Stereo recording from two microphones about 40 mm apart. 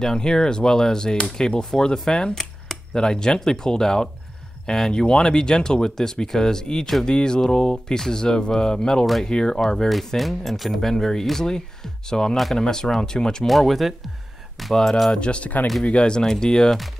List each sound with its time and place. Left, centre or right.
0.0 s speech: centre
9.8 s speech: centre
13.5 s speech: centre
14.8 s speech: centre
15.1 s speech: left